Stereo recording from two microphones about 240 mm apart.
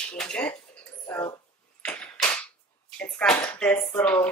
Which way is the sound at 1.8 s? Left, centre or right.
Centre.